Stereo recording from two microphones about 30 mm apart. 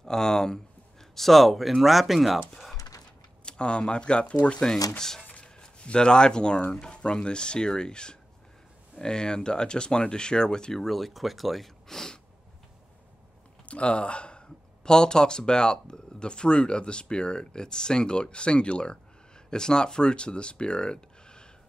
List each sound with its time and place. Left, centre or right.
0.0 s speech: centre
1.1 s speech: centre
3.4 s speech: left
4.6 s speech: left
5.9 s speech: left
10.7 s speech: centre
13.7 s speech: left